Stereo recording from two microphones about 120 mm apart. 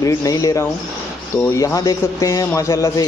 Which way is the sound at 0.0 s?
30° left (ahead or behind).